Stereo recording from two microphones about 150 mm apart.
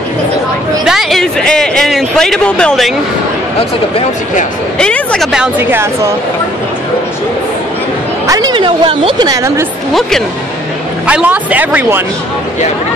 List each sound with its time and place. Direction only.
0.8 s speech: centre (ahead or behind)
4.7 s speech: 5° left (ahead or behind)
5.3 s speech: 10° right (ahead or behind)
8.3 s speech: 25° right (ahead or behind)
9.3 s a woman's voice: 20° right (ahead or behind)
11.1 s speech: 10° right (ahead or behind)